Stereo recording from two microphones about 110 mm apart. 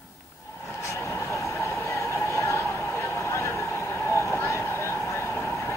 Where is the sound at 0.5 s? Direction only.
25° left (ahead or behind).